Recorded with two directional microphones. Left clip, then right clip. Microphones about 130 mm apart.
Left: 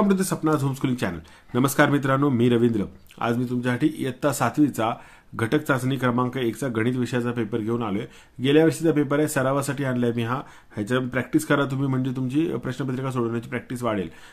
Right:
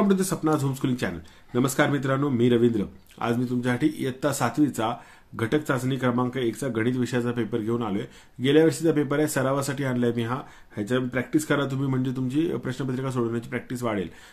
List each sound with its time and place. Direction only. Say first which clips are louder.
0.1 s speech: left 1 dB; 35° left (ahead or behind)